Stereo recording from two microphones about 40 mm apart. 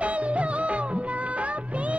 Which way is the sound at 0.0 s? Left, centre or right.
Right.